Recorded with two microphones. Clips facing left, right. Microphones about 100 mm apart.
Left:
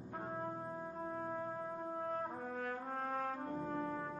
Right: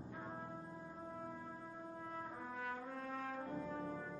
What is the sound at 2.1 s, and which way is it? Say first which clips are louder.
Brass instrument: left 6 dB; 50° left (ahead or behind).